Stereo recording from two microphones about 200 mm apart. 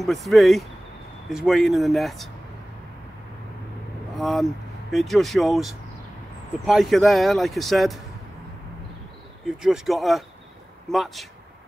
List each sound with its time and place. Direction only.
0.0 s speech: centre (ahead or behind)
4.2 s speech: centre (ahead or behind)
9.6 s speech: centre (ahead or behind)